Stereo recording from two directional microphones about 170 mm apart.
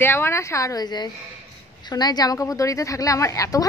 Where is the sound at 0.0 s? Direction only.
15° left (ahead or behind).